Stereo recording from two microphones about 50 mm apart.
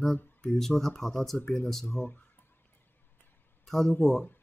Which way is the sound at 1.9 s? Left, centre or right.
Left.